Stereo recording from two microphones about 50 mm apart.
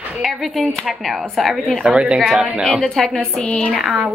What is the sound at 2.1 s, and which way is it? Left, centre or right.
A woman's voice, centre.